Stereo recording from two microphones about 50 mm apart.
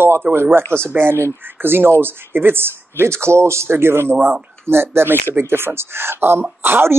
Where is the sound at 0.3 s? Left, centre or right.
Right.